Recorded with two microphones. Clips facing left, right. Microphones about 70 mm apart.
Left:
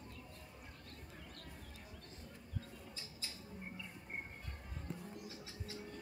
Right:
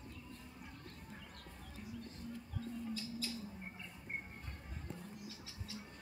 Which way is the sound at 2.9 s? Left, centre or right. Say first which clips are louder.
Right 9 dB; left.